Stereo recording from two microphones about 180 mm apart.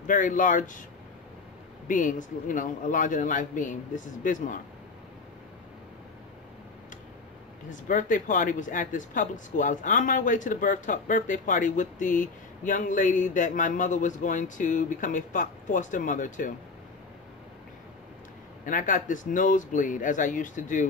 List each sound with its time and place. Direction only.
0.0 s speech: 45° left (ahead or behind)
1.9 s speech: 45° left (ahead or behind)
7.7 s speech: 45° left (ahead or behind)
18.7 s speech: 50° left (ahead or behind)